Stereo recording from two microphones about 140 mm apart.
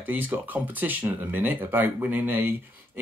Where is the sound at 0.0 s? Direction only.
15° right (ahead or behind).